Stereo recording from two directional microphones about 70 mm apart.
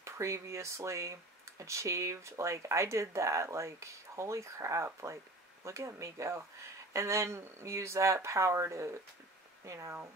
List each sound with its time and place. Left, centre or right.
0.0 s speech: right